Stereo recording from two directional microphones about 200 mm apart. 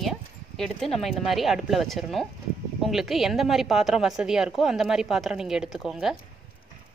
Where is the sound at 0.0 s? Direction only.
Centre (ahead or behind).